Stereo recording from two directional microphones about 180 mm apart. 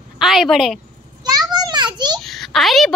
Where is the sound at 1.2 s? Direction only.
20° right (ahead or behind).